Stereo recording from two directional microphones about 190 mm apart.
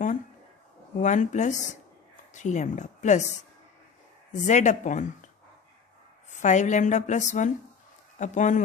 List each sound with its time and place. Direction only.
0.9 s speech: 40° left (ahead or behind)
6.4 s speech: 40° left (ahead or behind)